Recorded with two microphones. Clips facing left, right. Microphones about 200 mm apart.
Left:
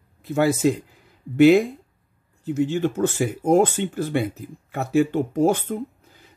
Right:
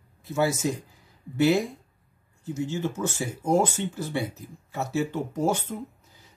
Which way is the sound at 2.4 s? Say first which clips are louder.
Left 7 dB; 60° left (ahead or behind).